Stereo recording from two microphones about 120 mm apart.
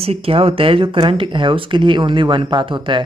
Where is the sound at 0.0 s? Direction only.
55° right (ahead or behind).